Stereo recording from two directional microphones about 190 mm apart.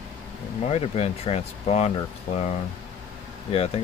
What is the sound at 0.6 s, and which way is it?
Speech, 35° left (ahead or behind).